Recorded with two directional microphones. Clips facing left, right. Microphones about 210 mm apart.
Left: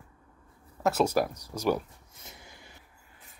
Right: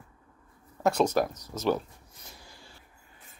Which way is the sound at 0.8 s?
5° left (ahead or behind).